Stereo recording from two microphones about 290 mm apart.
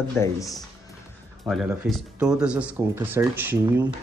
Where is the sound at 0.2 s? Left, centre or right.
Centre.